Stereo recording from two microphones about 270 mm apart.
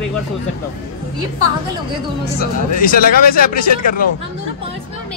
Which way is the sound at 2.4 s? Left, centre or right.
Left.